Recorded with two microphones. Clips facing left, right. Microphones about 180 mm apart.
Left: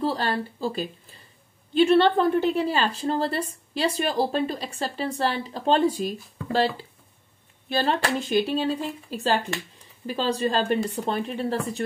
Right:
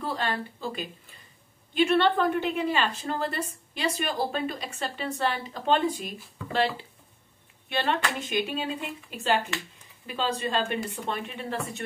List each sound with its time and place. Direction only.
0.0 s a woman's voice: 35° left (ahead or behind)